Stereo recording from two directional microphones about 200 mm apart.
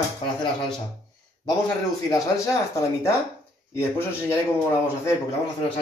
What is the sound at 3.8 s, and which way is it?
Speech, 10° left (ahead or behind).